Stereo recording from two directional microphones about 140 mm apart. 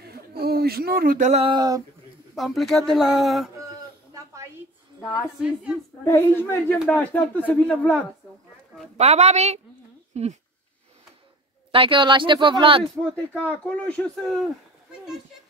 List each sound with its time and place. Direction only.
0.0 s a sound: 90° right; by 1.4 s 65° right (ahead or behind)
1.4 s speech: 30° right (ahead or behind)
2.3 s speech: centre (ahead or behind)
4.1 s a sound: 20° right (ahead or behind)
5.0 s speech: 5° right (ahead or behind)
6.0 s speech: 15° left (ahead or behind)
8.9 s a woman's voice: 50° right (ahead or behind)
11.7 s speech: 40° right (ahead or behind)
13.0 s speech: 10° left (ahead or behind)